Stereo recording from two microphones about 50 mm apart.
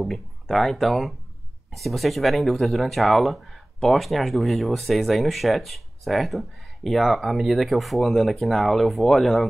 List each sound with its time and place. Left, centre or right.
0.0 s speech: centre